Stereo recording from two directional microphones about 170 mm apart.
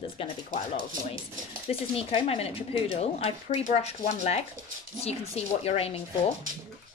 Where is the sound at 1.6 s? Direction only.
35° left (ahead or behind).